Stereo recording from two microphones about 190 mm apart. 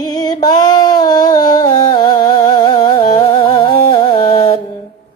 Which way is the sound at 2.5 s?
20° left (ahead or behind).